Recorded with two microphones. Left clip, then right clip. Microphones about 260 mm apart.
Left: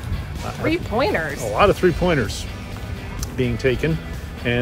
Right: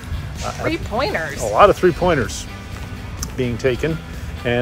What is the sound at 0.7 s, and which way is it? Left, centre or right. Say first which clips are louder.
Speech: left 2 dB; centre.